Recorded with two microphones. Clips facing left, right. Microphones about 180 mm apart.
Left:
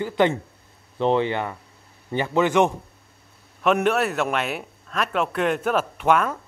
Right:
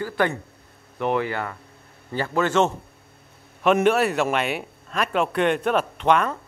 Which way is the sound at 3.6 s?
Centre (ahead or behind).